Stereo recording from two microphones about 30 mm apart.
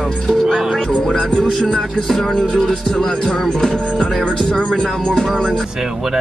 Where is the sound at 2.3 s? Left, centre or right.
Left.